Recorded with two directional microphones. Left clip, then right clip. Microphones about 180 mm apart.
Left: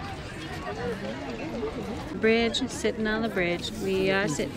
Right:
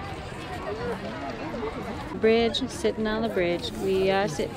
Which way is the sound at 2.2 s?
10° right (ahead or behind).